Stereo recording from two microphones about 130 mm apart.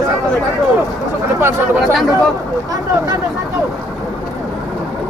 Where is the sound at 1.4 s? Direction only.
20° right (ahead or behind).